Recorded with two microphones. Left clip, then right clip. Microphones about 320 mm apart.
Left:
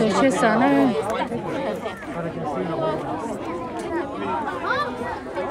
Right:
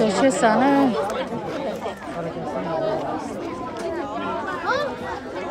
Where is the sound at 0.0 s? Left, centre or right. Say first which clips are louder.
Right 1 dB; centre.